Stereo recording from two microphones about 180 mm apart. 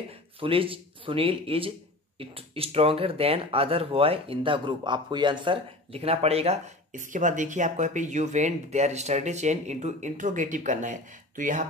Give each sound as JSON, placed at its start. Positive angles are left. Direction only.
{"t": 0.4, "sound": "speech", "side_deg": -30}